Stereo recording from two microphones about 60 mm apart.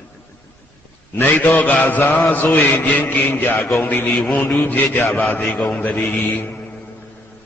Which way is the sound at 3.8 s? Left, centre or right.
Left.